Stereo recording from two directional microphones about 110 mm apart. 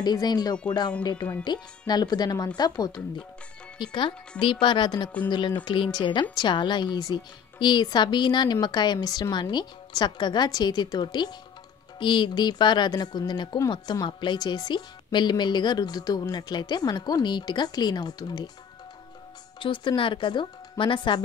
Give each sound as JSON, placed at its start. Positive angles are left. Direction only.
{"t": 0.0, "sound": "speech", "side_deg": 40}
{"t": 19.6, "sound": "speech", "side_deg": 50}